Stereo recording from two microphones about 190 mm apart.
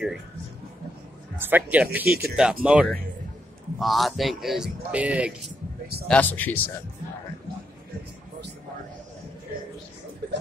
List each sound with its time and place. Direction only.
1.4 s speech: 10° right (ahead or behind)
2.0 s speech: 55° right (ahead or behind)
2.6 s speech: 5° right (ahead or behind)
6.0 s speech: 10° left (ahead or behind)